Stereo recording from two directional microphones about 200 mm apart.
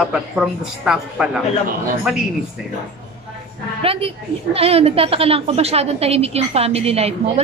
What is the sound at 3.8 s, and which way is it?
A woman's voice, 30° right (ahead or behind).